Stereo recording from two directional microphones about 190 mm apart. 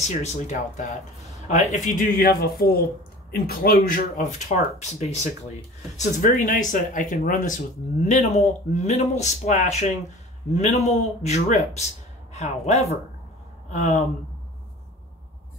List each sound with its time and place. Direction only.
0.0 s speech: 35° left (ahead or behind)
5.9 s speech: 45° left (ahead or behind)